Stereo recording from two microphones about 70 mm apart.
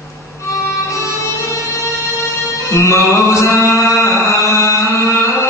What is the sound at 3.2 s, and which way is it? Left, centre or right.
Chant, left.